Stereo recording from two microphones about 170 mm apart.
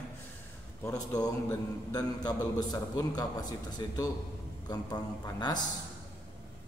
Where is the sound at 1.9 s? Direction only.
25° left (ahead or behind).